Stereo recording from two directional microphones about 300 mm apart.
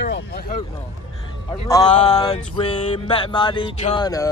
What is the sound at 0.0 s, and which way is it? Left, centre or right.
Speech, left.